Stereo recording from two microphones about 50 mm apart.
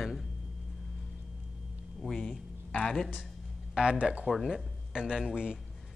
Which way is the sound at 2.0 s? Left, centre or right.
Centre.